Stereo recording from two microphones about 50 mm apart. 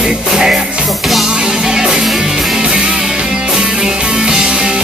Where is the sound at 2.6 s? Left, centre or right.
Centre.